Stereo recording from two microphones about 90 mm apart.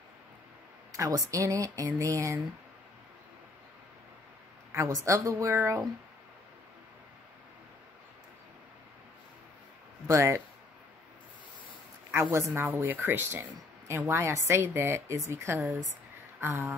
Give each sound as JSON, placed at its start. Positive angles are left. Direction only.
{"t": 0.9, "sound": "speech", "side_deg": -40}
{"t": 4.7, "sound": "speech", "side_deg": -35}
{"t": 10.0, "sound": "speech", "side_deg": -30}
{"t": 12.1, "sound": "a woman's voice", "side_deg": -30}
{"t": 12.6, "sound": "a woman's voice", "side_deg": -20}
{"t": 16.3, "sound": "a sound", "side_deg": -25}